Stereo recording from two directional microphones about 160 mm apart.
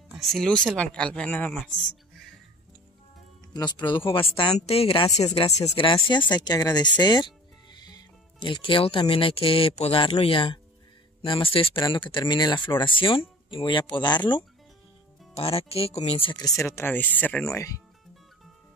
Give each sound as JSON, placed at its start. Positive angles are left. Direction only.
{"t": 0.1, "sound": "speech", "side_deg": 0}
{"t": 3.5, "sound": "speech", "side_deg": 30}
{"t": 17.6, "sound": "speech", "side_deg": 20}